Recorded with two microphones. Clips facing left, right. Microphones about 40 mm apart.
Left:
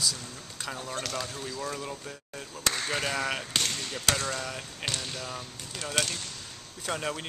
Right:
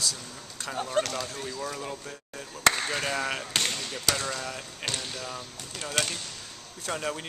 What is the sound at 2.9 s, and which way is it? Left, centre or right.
Speech, centre.